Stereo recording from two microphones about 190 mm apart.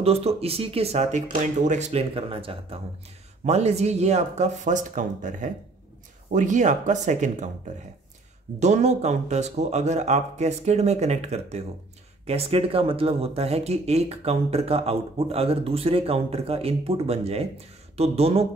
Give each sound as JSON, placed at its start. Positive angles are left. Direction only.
{"t": 0.0, "sound": "speech", "side_deg": -30}
{"t": 8.5, "sound": "speech", "side_deg": -40}